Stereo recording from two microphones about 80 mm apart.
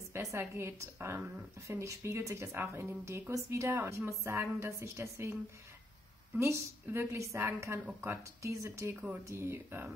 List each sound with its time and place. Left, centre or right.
0.1 s speech: right
6.4 s speech: right